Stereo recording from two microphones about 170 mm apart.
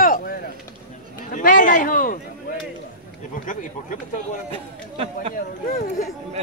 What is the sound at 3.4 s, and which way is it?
Speech, 50° left (ahead or behind).